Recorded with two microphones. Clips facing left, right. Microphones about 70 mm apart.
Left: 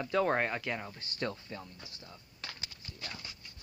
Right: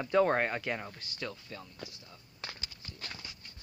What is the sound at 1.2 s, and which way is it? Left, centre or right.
Speech, left.